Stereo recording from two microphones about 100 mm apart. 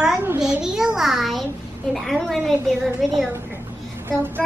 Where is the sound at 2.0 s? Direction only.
Centre (ahead or behind).